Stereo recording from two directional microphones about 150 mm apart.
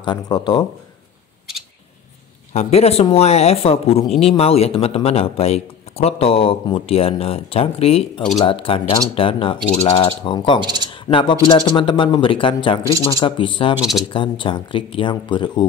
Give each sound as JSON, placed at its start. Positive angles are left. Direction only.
{"t": 0.0, "sound": "speech", "side_deg": 30}
{"t": 2.5, "sound": "speech", "side_deg": 45}
{"t": 10.6, "sound": "speech", "side_deg": -30}
{"t": 10.9, "sound": "speech", "side_deg": 35}
{"t": 13.7, "sound": "speech", "side_deg": 0}
{"t": 14.0, "sound": "speech", "side_deg": 35}